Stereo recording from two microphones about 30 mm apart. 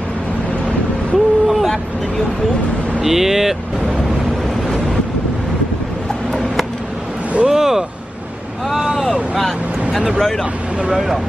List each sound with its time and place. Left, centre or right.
1.1 s a sound: centre
3.0 s speech: centre
7.4 s vehicle: centre
8.6 s boat: centre